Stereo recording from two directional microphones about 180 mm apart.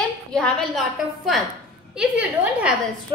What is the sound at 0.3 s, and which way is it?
A woman's voice, centre (ahead or behind).